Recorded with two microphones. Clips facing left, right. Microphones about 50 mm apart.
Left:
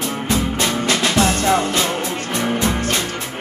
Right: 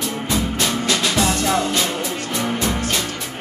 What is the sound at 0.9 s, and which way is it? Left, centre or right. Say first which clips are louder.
Music: left 3 dB; left.